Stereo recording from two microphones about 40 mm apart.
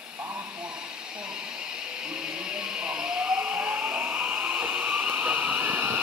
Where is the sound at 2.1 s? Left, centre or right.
Right.